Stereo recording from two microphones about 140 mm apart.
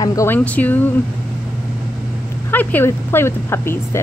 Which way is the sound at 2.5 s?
15° left (ahead or behind).